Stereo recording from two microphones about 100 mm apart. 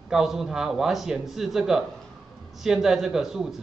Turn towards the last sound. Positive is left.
turn(degrees=-5)  # may be behind; listen again after turning